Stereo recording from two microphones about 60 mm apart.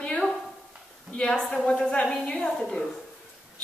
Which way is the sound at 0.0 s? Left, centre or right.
Centre.